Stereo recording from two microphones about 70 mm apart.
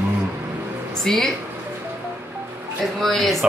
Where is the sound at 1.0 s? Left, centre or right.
Centre.